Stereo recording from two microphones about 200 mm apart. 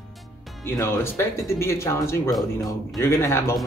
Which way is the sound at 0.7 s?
10° left (ahead or behind).